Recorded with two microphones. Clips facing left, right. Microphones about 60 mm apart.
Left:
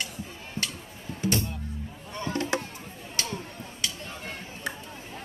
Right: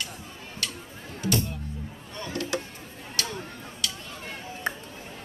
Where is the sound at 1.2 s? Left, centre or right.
Left.